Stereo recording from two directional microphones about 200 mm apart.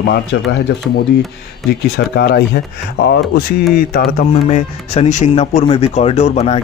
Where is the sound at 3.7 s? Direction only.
45° left (ahead or behind).